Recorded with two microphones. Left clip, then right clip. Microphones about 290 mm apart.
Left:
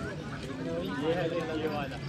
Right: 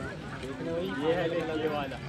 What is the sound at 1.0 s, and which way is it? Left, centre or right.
Speech, centre.